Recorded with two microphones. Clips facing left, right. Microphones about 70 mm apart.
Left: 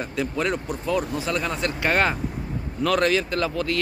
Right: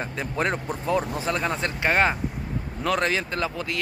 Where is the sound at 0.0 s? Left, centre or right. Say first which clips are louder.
Left 1 dB; right.